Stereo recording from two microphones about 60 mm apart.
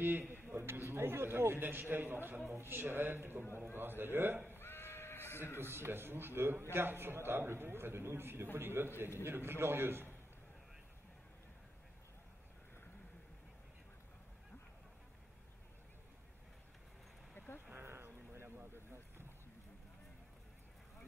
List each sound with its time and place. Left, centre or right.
0.0 s a man's voice: right
3.4 s a man's voice: left
3.7 s a man's voice: right
4.5 s bleat: left
5.6 s a man's voice: right
17.7 s a sound: right
18.6 s vehicle: right